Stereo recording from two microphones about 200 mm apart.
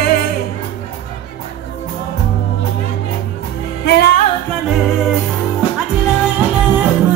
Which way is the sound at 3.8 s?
55° left (ahead or behind).